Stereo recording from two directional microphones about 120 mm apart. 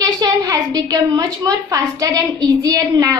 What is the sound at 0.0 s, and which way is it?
Speech, 30° right (ahead or behind).